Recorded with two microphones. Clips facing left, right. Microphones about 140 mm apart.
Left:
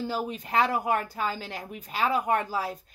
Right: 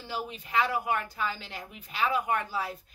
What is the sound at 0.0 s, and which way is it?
Speech, 45° left (ahead or behind).